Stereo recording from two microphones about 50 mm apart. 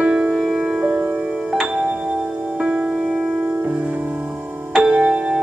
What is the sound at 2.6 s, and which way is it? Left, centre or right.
Music, centre.